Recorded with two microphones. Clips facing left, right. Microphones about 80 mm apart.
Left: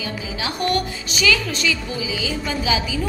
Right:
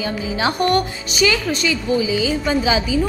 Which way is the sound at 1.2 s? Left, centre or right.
Right.